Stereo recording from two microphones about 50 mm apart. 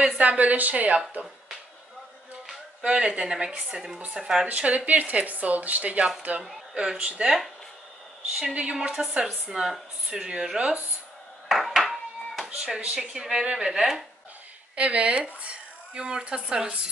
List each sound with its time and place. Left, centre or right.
0.0 s speech: right
2.4 s speech: centre
4.5 s speech: right
7.2 s speech: centre
8.5 s speech: centre
11.4 s dishes: centre
12.4 s speech: centre
14.8 s speech: right